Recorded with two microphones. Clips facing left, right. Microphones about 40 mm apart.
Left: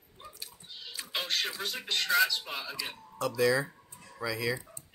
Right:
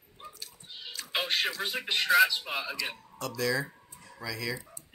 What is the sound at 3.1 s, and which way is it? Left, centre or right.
Speech, centre.